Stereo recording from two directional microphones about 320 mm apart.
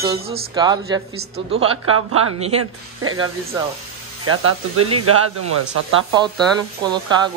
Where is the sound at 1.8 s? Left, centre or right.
Right.